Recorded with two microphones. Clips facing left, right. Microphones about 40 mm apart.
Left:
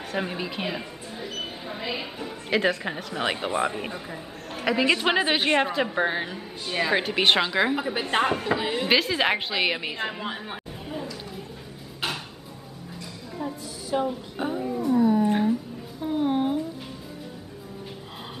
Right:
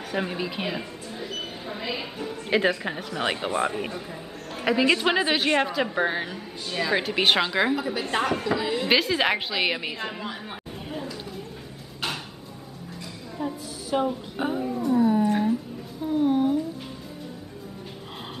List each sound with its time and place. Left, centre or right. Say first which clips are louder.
0.1 s a woman's voice: right 1 dB; centre
6.7 s speech: left 1 dB; left
7.0 s a woman's voice: even; centre
8.0 s speech: left 1 dB; centre
8.8 s a woman's voice: even; centre
10.9 s a sound: even; centre
13.4 s a sound: right 2 dB; centre
14.7 s dog: left 1 dB; centre
16.1 s a sound: right 2 dB; left